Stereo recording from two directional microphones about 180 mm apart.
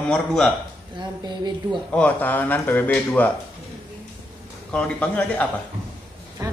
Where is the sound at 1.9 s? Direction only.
10° left (ahead or behind).